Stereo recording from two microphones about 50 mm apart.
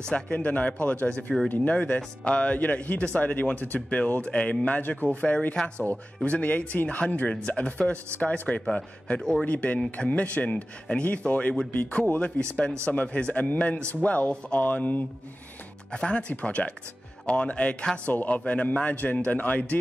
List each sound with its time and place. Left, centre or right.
0.0 s speech: left
9.5 s speech: left
15.9 s speech: centre
18.1 s speech: left